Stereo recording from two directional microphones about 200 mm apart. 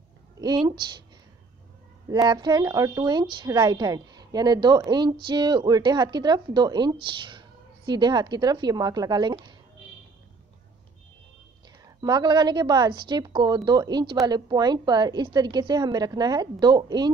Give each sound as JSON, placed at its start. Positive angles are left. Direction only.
{"t": 0.4, "sound": "a woman's voice", "side_deg": -20}
{"t": 2.0, "sound": "a woman's voice", "side_deg": -20}
{"t": 12.0, "sound": "a woman's voice", "side_deg": -20}